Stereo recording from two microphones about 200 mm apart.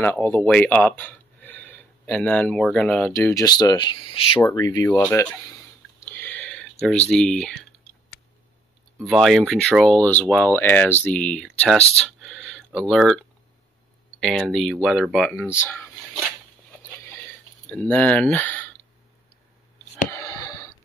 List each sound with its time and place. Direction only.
0.0 s speech: 10° left (ahead or behind)
3.1 s speech: 15° left (ahead or behind)
6.0 s clicking: 10° left (ahead or behind)
9.0 s speech: centre (ahead or behind)
12.0 s a sound: 5° left (ahead or behind)
14.2 s speech: 5° left (ahead or behind)
15.4 s speech: 10° left (ahead or behind)
17.6 s speech: 5° left (ahead or behind)
20.1 s a sound: 15° left (ahead or behind)